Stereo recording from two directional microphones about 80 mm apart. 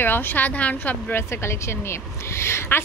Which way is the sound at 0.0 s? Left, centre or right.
Left.